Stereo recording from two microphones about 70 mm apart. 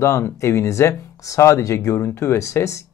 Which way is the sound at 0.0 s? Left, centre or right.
Left.